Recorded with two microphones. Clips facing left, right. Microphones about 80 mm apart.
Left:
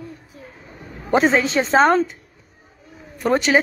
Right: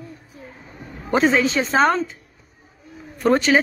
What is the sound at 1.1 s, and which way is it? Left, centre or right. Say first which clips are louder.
A woman's voice: left 1 dB; left.